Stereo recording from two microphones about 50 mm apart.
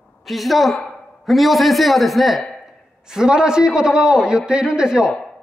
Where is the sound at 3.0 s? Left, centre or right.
Centre.